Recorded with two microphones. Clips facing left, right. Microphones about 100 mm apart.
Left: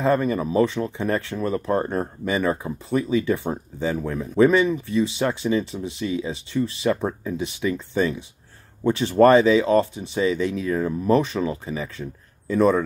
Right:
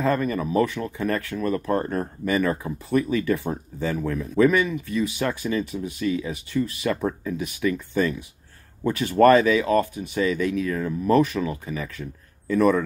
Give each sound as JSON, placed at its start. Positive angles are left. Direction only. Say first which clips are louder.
{"t": 0.0, "sound": "speech", "louder": "left 2 dB", "side_deg": 25}